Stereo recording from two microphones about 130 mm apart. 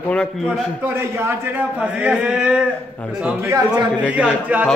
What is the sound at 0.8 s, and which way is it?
A man's voice, 20° right (ahead or behind).